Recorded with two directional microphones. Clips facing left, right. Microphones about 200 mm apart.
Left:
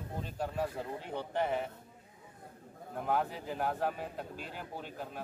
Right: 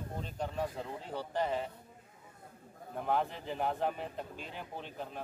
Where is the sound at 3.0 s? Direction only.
5° left (ahead or behind).